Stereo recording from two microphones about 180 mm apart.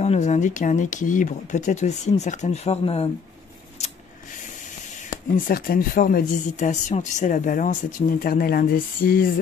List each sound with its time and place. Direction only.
0.0 s speech: 40° left (ahead or behind)
5.5 s speech: 55° left (ahead or behind)